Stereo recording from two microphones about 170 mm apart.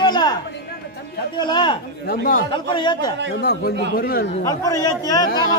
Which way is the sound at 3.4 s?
75° left (ahead or behind).